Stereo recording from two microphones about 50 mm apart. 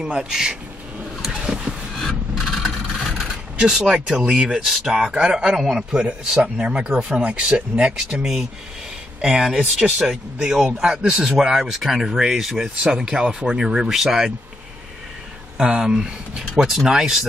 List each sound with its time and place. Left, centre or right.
0.0 s speech: centre
1.5 s vehicle: centre
2.0 s a sound: centre
3.5 s speech: centre
15.5 s speech: centre